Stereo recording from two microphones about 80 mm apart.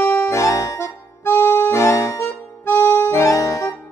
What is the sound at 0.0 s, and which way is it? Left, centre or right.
Music, left.